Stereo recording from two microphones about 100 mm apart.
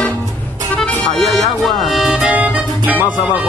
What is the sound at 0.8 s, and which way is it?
Music, centre (ahead or behind).